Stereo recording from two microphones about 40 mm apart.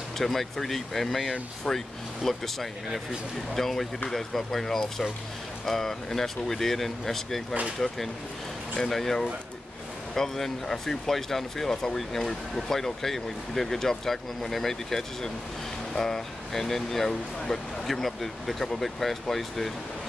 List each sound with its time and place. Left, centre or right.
0.2 s speech: centre
1.6 s speech: centre
2.2 s speech: centre